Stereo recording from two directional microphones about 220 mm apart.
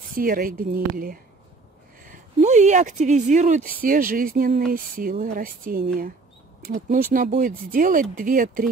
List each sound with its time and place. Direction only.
0.1 s speech: 40° right (ahead or behind)